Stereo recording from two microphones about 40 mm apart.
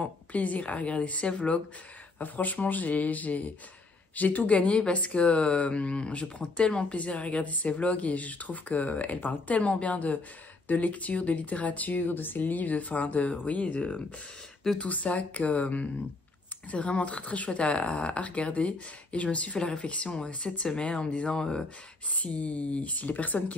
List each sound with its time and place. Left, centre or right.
0.0 s a woman's voice: left
2.1 s a woman's voice: left
6.8 s a woman's voice: left
14.8 s a woman's voice: left; by 21.6 s centre
22.1 s a woman's voice: left